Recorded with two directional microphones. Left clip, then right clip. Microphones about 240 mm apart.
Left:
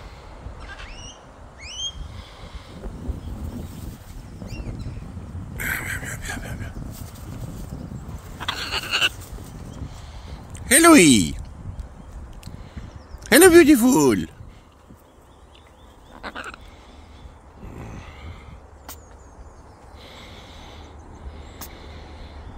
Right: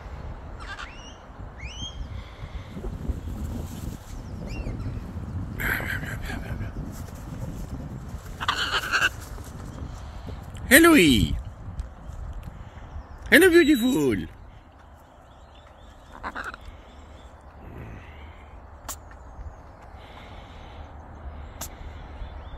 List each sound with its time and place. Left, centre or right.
5.6 s a sound: left
8.4 s sheep: left
10.7 s speech: left
13.2 s speech: left
16.2 s a sound: left
17.7 s vehicle: left
20.2 s vehicle: left